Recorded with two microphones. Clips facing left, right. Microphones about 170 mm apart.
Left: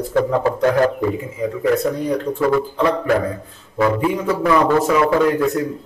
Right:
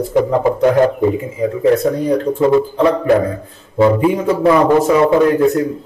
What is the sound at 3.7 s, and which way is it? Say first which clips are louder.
A man's voice: right 5 dB; 25° right (ahead or behind).